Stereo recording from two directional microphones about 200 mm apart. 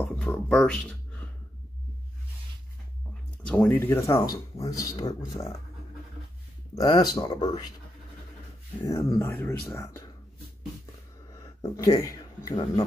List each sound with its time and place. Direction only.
0.0 s a sound: 5° left (ahead or behind)
3.4 s speech: 5° left (ahead or behind)
6.7 s speech: 20° left (ahead or behind)
8.8 s speech: 15° left (ahead or behind)
11.3 s speech: 15° left (ahead or behind)